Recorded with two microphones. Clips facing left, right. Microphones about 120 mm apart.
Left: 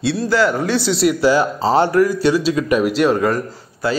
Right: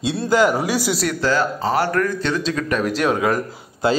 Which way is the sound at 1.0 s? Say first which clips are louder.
Left 8 dB; 15° left (ahead or behind).